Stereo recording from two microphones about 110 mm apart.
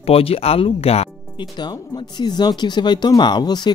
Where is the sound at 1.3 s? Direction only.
40° left (ahead or behind).